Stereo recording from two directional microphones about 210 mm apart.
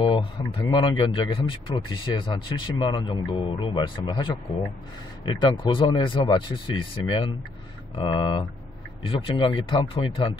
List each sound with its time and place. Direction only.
0.0 s speech: 25° left (ahead or behind)